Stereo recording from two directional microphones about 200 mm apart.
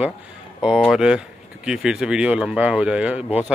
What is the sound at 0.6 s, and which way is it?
Speech, 5° right (ahead or behind).